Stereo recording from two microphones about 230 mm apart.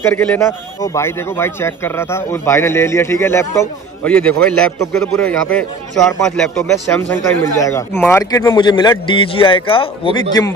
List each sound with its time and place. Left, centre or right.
0.0 s a man's voice: centre
8.2 s a man's voice: centre